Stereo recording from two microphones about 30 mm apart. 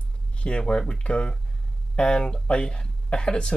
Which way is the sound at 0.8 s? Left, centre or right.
Left.